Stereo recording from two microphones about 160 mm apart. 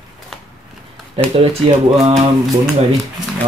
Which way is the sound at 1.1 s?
40° right (ahead or behind).